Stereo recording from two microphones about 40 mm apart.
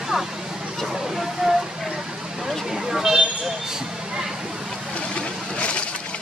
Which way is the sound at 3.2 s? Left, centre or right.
Centre.